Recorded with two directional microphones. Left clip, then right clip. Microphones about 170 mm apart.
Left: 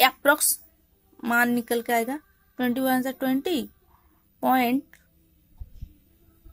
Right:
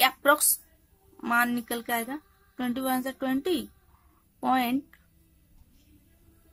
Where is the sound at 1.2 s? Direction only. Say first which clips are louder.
Left 3 dB; 15° left (ahead or behind).